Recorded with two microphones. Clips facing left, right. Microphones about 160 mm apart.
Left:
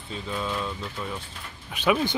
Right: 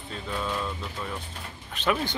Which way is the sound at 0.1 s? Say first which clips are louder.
Left 1 dB; centre (ahead or behind).